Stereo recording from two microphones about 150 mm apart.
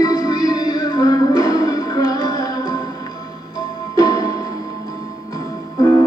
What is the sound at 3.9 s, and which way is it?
Music, 25° left (ahead or behind).